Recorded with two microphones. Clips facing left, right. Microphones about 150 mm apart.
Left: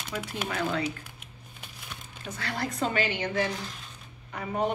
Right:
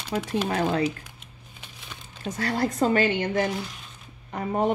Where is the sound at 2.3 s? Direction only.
40° right (ahead or behind).